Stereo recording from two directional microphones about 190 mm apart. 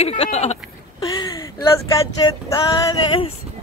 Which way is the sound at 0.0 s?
30° left (ahead or behind).